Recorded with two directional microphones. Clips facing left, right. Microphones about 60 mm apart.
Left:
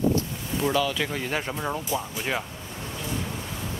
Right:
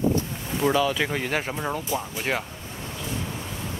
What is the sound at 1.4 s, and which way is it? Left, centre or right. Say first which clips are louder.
Speech: right 1 dB; centre.